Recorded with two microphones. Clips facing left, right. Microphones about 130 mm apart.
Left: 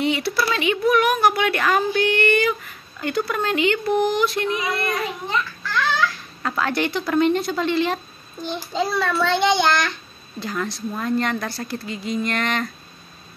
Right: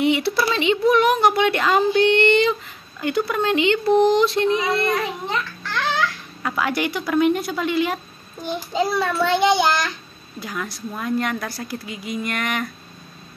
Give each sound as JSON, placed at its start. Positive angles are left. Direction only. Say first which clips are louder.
{"t": 0.0, "sound": "speech", "louder": "right 3 dB", "side_deg": -20}
{"t": 6.4, "sound": "a woman's voice", "louder": "even", "side_deg": -10}